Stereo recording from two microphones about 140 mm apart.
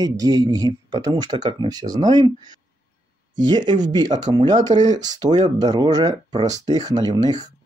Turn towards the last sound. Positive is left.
turn(degrees=-30)  # may be behind; listen again after turning